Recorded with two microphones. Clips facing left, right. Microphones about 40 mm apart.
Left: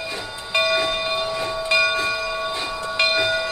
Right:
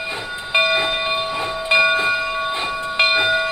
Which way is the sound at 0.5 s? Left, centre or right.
Right.